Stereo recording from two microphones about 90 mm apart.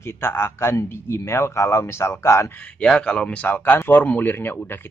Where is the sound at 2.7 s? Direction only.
10° left (ahead or behind).